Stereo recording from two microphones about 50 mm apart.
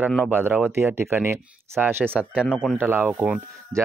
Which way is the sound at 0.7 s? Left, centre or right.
Right.